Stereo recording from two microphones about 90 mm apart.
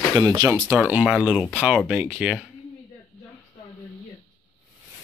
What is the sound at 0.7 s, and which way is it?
Speech, 15° right (ahead or behind).